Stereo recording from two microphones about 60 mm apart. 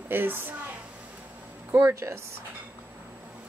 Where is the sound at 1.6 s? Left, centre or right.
Right.